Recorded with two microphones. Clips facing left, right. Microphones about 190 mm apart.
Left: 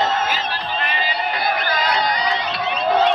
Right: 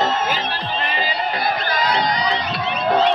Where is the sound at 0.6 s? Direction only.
40° right (ahead or behind).